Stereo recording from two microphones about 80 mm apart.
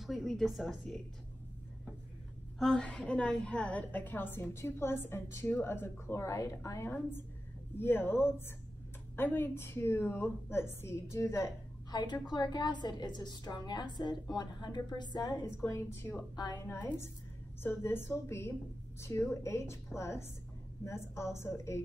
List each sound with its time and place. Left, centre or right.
0.0 s speech: centre
2.6 s a woman's voice: centre; by 6.8 s left
6.8 s a woman's voice: left
11.9 s a woman's voice: left
15.5 s a woman's voice: left